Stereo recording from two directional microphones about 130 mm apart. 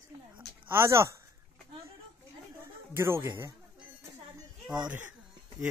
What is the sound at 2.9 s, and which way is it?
Speech, 20° right (ahead or behind).